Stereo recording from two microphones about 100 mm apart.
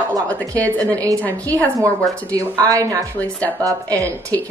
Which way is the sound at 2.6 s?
35° right (ahead or behind).